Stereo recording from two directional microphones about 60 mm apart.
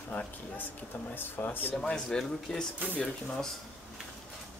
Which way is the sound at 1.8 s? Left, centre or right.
Centre.